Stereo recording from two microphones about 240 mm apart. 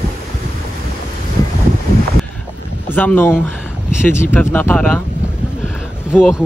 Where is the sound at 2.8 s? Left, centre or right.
Centre.